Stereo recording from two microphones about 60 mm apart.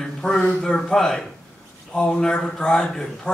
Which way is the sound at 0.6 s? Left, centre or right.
Centre.